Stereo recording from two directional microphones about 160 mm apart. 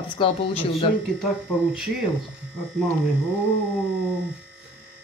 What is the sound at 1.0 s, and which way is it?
Speech, centre (ahead or behind).